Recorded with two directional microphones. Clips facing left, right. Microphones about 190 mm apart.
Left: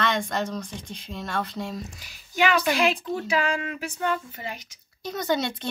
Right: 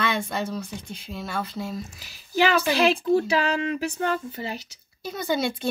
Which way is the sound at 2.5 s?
35° right (ahead or behind).